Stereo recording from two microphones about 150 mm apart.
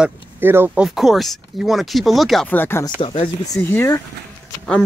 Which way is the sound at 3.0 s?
35° left (ahead or behind).